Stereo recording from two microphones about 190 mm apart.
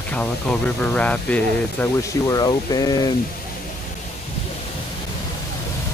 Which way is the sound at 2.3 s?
20° left (ahead or behind).